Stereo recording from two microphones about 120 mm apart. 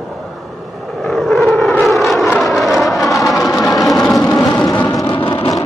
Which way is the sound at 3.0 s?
30° left (ahead or behind).